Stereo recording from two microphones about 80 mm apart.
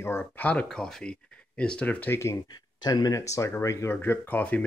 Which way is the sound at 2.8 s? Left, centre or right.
Left.